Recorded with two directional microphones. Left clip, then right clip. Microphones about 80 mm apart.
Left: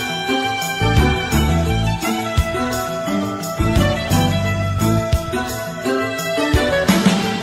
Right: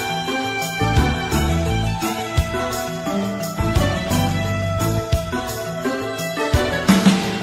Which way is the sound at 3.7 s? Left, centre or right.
Left.